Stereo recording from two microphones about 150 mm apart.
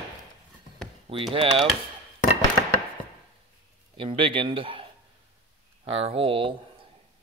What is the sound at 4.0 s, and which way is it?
Speech, 35° right (ahead or behind).